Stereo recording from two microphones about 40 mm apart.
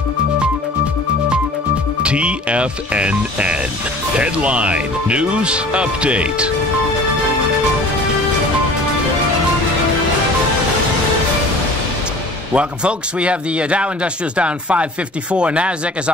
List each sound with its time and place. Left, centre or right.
2.0 s speech: right
12.5 s speech: right